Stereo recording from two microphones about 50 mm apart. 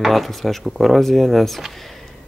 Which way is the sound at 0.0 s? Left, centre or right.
Centre.